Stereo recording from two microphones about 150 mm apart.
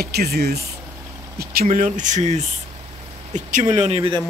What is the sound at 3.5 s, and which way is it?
Speech, 50° right (ahead or behind).